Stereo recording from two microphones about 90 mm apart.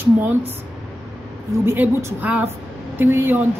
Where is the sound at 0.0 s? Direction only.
20° right (ahead or behind).